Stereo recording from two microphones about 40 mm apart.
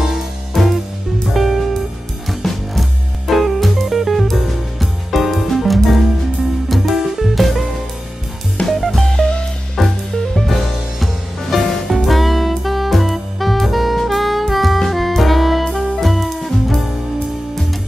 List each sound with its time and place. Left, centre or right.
0.5 s music: centre
1.3 s music: centre
8.6 s drum kit: left
9.2 s music: centre
9.8 s music: centre